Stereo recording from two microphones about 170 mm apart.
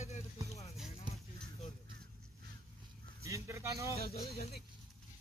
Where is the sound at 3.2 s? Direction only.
15° right (ahead or behind).